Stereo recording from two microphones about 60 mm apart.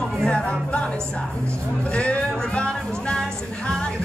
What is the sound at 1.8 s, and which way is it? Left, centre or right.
Speech, centre.